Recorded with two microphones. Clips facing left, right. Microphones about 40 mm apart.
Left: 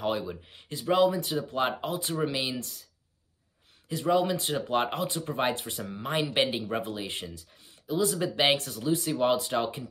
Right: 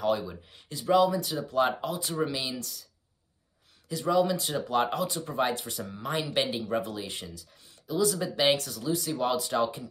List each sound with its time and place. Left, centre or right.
0.5 s speech: left
3.9 s speech: left